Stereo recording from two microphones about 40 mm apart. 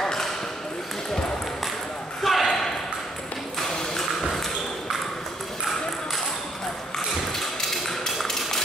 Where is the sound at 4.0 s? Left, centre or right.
Centre.